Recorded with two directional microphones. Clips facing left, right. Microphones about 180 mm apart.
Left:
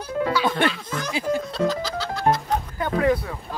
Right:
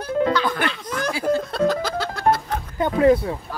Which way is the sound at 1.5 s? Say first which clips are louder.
Right 3 dB; 55° right (ahead or behind).